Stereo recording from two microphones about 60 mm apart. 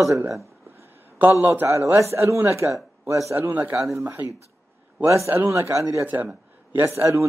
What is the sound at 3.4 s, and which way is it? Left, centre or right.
Speech, right.